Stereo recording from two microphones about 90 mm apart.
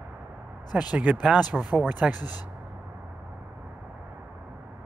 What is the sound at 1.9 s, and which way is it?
Speech, 15° right (ahead or behind).